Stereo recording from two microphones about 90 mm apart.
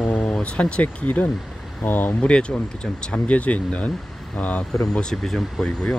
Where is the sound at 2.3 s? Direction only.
10° left (ahead or behind).